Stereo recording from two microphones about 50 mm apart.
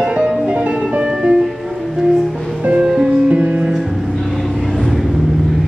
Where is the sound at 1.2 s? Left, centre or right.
Centre.